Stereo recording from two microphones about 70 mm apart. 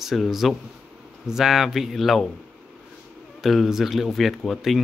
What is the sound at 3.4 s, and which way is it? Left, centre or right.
Speech, centre.